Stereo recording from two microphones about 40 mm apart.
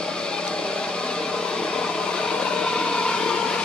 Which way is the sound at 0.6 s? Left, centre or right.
Left.